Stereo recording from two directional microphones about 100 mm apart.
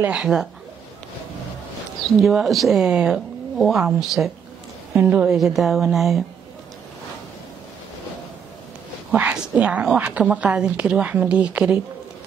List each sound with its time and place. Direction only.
0.0 s a woman's voice: 5° right (ahead or behind)
2.2 s speech: centre (ahead or behind)
4.9 s a woman's voice: 20° right (ahead or behind)
5.3 s speech: 5° right (ahead or behind)
9.1 s a woman's voice: 15° right (ahead or behind)